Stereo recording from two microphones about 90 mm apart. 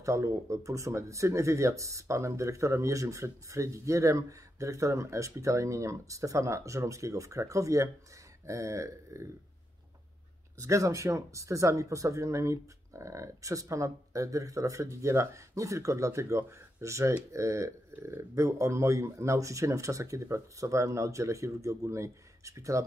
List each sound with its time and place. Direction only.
0.0 s speech: 35° right (ahead or behind)
10.6 s speech: 35° right (ahead or behind)